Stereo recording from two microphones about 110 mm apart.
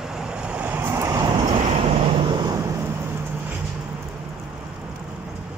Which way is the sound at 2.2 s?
45° right (ahead or behind).